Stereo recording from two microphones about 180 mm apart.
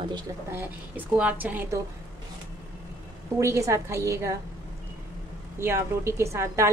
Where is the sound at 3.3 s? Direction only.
15° right (ahead or behind).